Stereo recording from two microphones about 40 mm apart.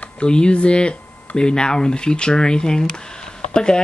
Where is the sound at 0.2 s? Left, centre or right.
Left.